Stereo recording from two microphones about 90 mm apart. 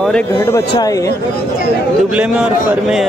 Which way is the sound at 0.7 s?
45° left (ahead or behind).